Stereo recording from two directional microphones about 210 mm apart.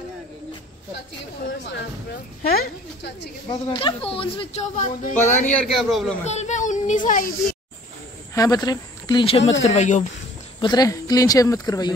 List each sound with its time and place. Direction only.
2.5 s a woman's voice: 50° left (ahead or behind)
3.4 s speech: 20° left (ahead or behind)
5.5 s a man's voice: 5° left (ahead or behind)
6.2 s child singing: 35° left (ahead or behind)
7.1 s speech: 40° left (ahead or behind)
8.4 s speech: 20° left (ahead or behind); by 10.0 s 35° left (ahead or behind)
10.6 s speech: 20° left (ahead or behind)